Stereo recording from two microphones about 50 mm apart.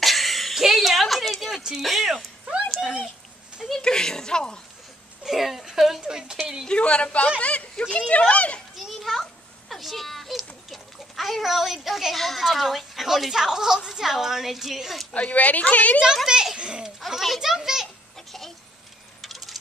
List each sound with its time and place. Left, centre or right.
0.0 s a sound: centre
1.8 s speech: centre
2.8 s a child's voice: centre
3.8 s speech: centre
5.2 s speech: centre
6.7 s a man's voice: left
8.7 s a child's voice: centre
15.1 s a man's voice: left
16.3 s a child's voice: centre
16.5 s a sound: centre
17.0 s a child's voice: centre
18.1 s a sound: centre
19.2 s coin: centre